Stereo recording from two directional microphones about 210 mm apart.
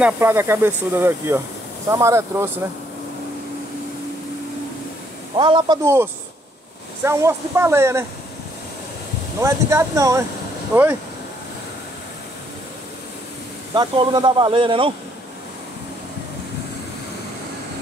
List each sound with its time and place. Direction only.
0.0 s speech: 10° right (ahead or behind)
5.3 s speech: 25° right (ahead or behind)
9.4 s speech: 15° right (ahead or behind)
13.7 s speech: 20° right (ahead or behind)